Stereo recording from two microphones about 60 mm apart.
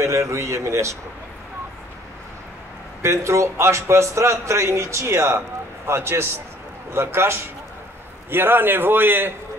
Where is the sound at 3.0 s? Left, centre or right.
Right.